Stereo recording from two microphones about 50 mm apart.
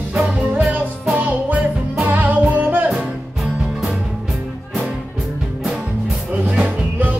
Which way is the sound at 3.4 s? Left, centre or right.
Centre.